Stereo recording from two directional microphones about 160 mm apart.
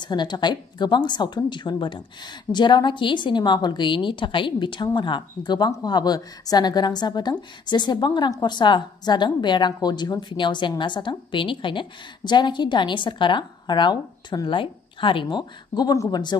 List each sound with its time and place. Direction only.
0.0 s a woman's voice: 25° left (ahead or behind)